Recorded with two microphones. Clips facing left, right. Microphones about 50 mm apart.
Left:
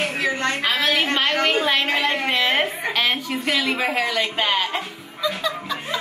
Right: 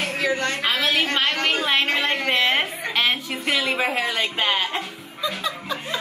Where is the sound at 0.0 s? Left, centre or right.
Left.